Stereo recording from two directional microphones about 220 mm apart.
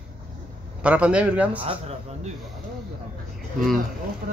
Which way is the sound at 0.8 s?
5° right (ahead or behind).